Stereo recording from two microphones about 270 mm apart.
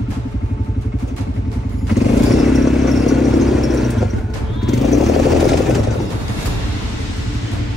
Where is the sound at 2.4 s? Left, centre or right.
Centre.